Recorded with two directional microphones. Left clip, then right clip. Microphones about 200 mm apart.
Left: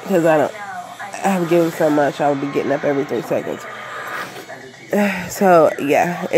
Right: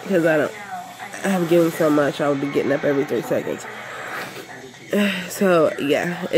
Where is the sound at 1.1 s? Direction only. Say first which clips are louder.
Left 2 dB; centre (ahead or behind).